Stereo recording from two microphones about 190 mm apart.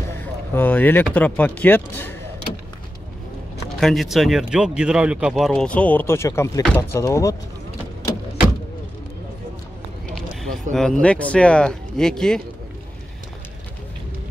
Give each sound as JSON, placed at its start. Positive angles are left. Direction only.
{"t": 0.2, "sound": "speech", "side_deg": 10}
{"t": 3.8, "sound": "speech", "side_deg": 0}
{"t": 10.0, "sound": "speech", "side_deg": 0}